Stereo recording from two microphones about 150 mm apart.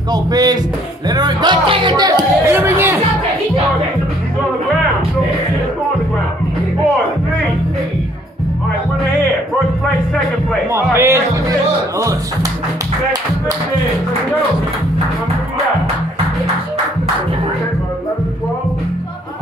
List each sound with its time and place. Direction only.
0.1 s speech: 25° right (ahead or behind)
11.0 s speech: 20° right (ahead or behind)